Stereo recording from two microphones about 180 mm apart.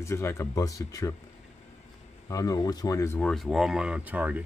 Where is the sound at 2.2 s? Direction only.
20° left (ahead or behind).